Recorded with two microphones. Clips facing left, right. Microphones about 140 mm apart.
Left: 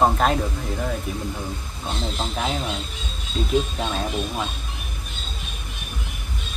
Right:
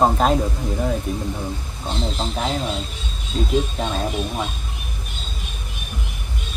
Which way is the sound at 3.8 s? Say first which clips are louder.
Right 2 dB; centre (ahead or behind).